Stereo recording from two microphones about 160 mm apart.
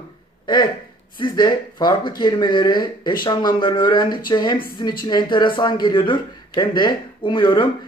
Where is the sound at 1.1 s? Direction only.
25° left (ahead or behind).